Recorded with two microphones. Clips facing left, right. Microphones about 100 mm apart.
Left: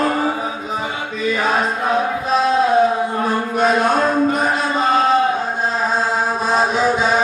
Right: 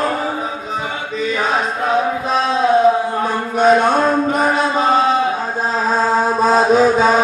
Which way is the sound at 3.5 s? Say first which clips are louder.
Right 5 dB; centre (ahead or behind).